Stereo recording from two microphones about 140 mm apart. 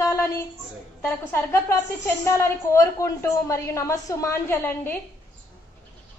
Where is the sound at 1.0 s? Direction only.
15° left (ahead or behind).